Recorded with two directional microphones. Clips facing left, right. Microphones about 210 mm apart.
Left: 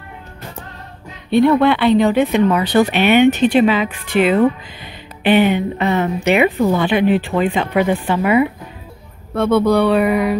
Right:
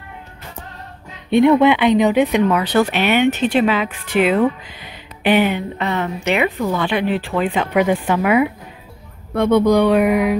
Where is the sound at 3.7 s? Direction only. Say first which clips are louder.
Left 2 dB; 10° right (ahead or behind).